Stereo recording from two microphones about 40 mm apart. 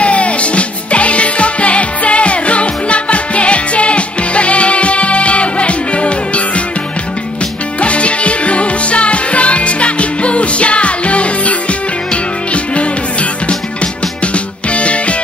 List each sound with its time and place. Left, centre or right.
0.0 s music: left
7.8 s music: left
14.2 s music: left